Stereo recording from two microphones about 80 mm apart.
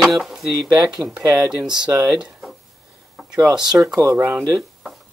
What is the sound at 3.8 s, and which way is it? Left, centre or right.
Speech, centre.